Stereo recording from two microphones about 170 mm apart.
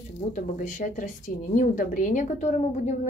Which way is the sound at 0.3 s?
45° left (ahead or behind).